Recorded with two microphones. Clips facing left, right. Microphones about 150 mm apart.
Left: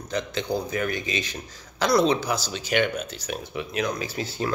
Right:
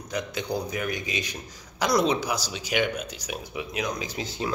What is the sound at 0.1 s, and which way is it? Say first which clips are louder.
Speech: left 2 dB; 10° right (ahead or behind).